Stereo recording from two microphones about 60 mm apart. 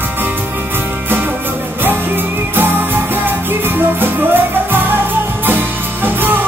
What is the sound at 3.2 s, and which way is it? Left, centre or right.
Music, right.